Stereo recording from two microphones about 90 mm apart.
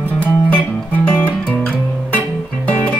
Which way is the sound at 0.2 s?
15° left (ahead or behind).